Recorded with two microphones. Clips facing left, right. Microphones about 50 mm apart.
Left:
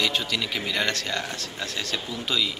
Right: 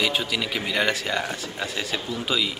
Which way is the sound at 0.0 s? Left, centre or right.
Centre.